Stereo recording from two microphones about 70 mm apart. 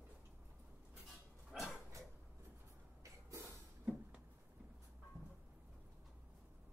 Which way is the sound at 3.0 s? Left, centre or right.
Right.